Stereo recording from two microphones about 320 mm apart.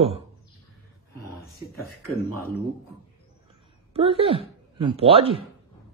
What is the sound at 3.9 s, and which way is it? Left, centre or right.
Speech, centre.